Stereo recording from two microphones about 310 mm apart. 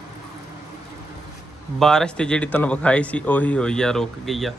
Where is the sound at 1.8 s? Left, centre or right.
Centre.